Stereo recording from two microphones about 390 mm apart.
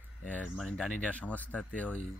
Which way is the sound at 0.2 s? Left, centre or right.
Centre.